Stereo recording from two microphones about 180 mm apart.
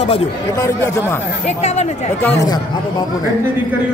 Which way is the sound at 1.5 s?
40° left (ahead or behind).